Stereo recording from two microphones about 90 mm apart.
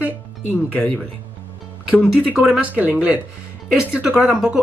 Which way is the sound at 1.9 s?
15° right (ahead or behind).